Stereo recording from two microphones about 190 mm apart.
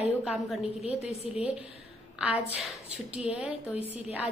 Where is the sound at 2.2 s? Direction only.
5° right (ahead or behind).